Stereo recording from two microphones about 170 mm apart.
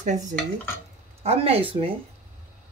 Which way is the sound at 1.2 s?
35° right (ahead or behind).